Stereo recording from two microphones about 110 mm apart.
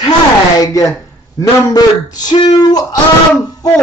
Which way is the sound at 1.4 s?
35° left (ahead or behind).